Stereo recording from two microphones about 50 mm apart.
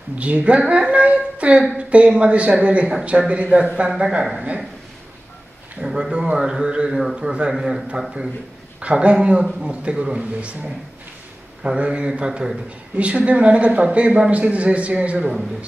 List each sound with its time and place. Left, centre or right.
0.2 s a woman's voice: right
5.8 s speech: centre
7.5 s speech: centre
8.8 s speech: right